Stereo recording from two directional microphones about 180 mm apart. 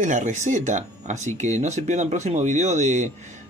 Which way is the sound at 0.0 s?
45° right (ahead or behind).